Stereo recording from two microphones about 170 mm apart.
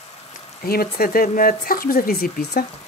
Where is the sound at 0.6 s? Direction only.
60° left (ahead or behind).